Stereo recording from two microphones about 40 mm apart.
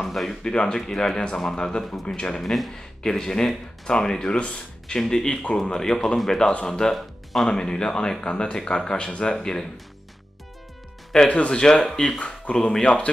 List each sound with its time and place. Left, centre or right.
0.0 s speech: centre
0.4 s speech: centre
5.1 s speech: centre
7.5 s speech: centre
11.2 s speech: left
11.5 s speech: centre
12.4 s speech: left